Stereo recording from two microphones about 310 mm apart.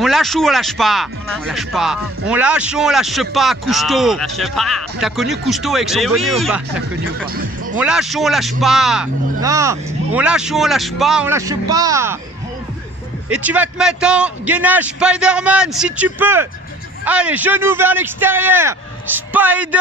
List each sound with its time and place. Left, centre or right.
0.0 s speech: centre
7.2 s music: right
7.8 s speech: centre
13.3 s a man's voice: centre